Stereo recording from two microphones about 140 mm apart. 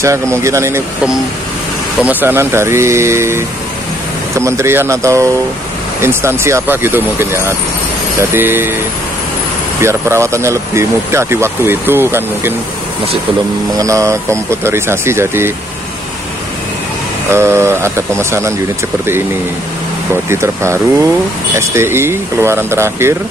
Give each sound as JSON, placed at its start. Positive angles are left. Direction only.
{"t": 0.0, "sound": "speech", "side_deg": -20}
{"t": 2.0, "sound": "speech", "side_deg": -10}
{"t": 9.8, "sound": "speech", "side_deg": -20}
{"t": 13.7, "sound": "speech", "side_deg": -25}
{"t": 17.3, "sound": "speech", "side_deg": -20}
{"t": 20.2, "sound": "speech", "side_deg": -20}